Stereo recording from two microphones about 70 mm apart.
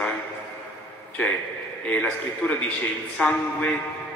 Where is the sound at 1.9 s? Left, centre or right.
Centre.